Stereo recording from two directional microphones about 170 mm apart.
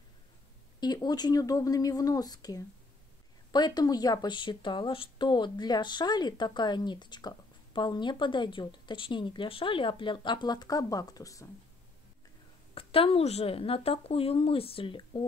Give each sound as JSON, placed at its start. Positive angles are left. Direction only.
{"t": 0.7, "sound": "a woman's voice", "side_deg": 25}
{"t": 12.7, "sound": "a woman's voice", "side_deg": 35}